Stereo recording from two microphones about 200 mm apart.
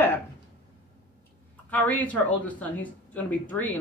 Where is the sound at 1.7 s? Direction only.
10° left (ahead or behind).